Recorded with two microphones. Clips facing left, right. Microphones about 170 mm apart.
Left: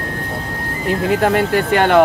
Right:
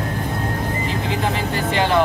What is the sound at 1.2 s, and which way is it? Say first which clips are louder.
Vehicle: left 7 dB; 65° left (ahead or behind).